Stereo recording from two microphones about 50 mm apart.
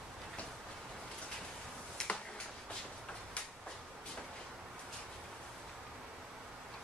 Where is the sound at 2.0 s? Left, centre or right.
Centre.